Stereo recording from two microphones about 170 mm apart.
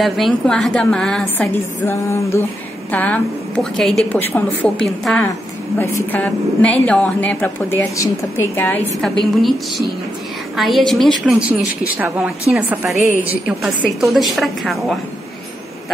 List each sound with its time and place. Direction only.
0.0 s a woman's voice: centre (ahead or behind)
1.9 s a woman's voice: 15° left (ahead or behind)
9.0 s a woman's voice: centre (ahead or behind)